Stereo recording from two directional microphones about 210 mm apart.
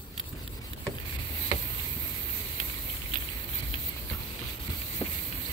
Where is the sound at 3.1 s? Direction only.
20° left (ahead or behind).